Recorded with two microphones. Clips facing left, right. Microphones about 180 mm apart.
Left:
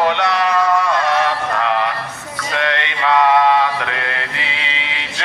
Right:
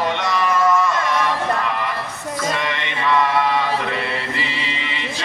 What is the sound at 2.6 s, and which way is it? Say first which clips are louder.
Mantra: left 3 dB; 80° left.